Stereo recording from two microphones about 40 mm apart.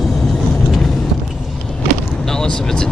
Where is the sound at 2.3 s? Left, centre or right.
Centre.